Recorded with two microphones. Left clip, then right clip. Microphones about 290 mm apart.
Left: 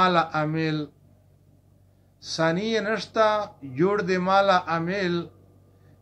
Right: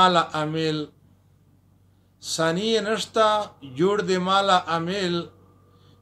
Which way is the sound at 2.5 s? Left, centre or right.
Right.